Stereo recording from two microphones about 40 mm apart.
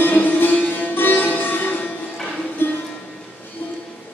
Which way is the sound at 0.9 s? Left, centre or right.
Left.